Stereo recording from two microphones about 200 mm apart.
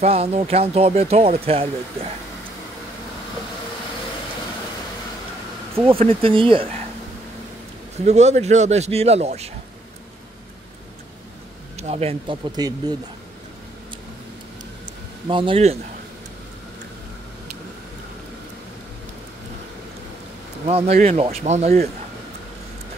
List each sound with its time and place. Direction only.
0.0 s speech: 30° right (ahead or behind)
5.9 s speech: 25° right (ahead or behind)
8.0 s speech: 35° right (ahead or behind)
11.8 s speech: 30° right (ahead or behind)
15.2 s speech: 25° right (ahead or behind)
20.6 s speech: 30° right (ahead or behind)